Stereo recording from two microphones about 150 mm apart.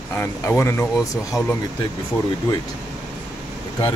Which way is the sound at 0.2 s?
20° left (ahead or behind).